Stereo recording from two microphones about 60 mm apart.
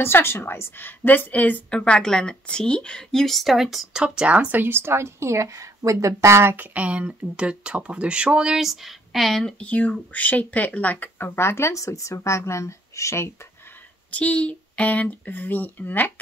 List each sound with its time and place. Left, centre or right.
0.0 s a woman's voice: left; by 5.5 s right
5.5 s speech: right
6.5 s speech: right; by 9.6 s centre
9.6 s speech: left
14.1 s speech: left